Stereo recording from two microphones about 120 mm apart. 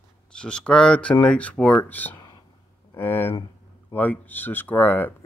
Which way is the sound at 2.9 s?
15° left (ahead or behind).